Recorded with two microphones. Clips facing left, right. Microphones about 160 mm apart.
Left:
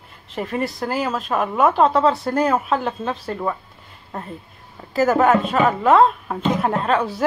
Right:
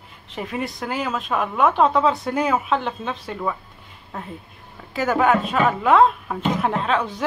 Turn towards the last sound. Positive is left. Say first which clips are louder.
# left 2 dB
turn(degrees=5)  # may be behind; listen again after turning